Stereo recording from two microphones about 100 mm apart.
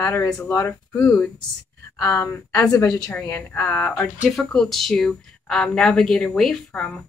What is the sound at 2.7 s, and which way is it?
Speech, 35° left (ahead or behind).